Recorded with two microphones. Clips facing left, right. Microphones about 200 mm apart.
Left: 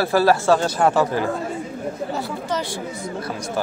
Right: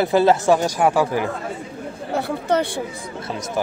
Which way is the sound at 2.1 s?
60° right (ahead or behind).